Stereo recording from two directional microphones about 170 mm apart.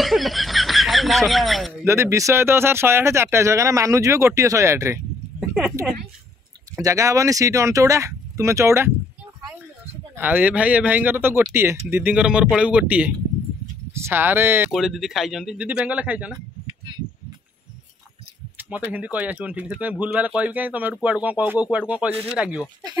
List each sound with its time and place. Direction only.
0.0 s snicker: centre (ahead or behind)
1.9 s speech: 15° right (ahead or behind)
6.8 s speech: 15° right (ahead or behind)
10.1 s speech: 10° right (ahead or behind)
14.7 s speech: centre (ahead or behind)
18.6 s speech: 10° right (ahead or behind)